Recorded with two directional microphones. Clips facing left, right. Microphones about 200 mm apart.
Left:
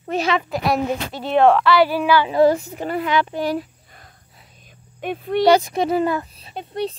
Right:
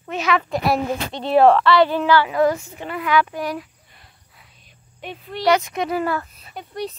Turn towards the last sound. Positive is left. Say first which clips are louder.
# left 4 dB
turn(degrees=25)  # may be behind; listen again after turning